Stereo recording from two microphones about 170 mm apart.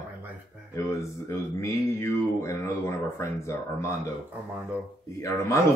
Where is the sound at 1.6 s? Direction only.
15° left (ahead or behind).